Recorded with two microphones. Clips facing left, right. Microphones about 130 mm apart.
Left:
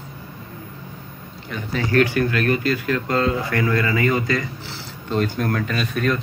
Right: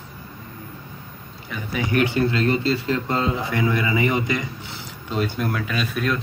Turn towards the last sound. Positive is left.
turn(degrees=0)  # may be behind; listen again after turning